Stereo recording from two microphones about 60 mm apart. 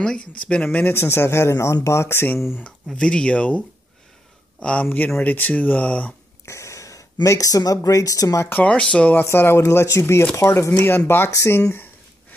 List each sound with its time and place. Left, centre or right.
0.0 s speech: centre
0.7 s speech: left
2.6 s speech: centre
4.8 s speech: left
6.4 s speech: left
8.5 s speech: left
9.2 s speech: left
9.6 s speech: left
10.7 s speech: left
11.7 s a sound: left